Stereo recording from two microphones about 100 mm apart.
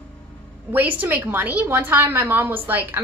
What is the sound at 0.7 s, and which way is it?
A woman's voice, 15° right (ahead or behind).